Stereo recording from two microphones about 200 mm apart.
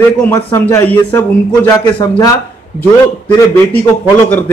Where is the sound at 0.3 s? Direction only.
15° left (ahead or behind).